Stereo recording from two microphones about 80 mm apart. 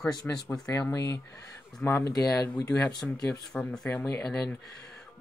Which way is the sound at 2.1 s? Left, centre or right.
Left.